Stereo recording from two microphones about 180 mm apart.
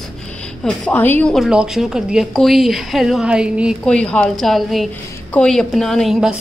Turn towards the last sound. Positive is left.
turn(degrees=-5)  # may be behind; listen again after turning